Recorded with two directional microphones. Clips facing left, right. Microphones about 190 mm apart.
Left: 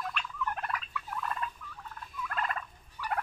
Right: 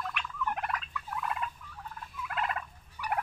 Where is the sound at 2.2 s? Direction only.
15° right (ahead or behind).